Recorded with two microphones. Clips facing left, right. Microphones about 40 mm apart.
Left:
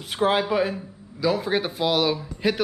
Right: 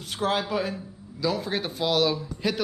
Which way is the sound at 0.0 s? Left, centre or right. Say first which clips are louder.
Left 5 dB; centre.